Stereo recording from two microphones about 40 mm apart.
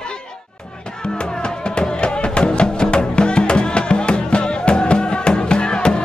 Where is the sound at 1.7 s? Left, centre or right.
Left.